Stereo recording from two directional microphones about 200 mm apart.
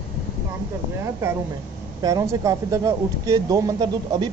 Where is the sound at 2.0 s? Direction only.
15° right (ahead or behind).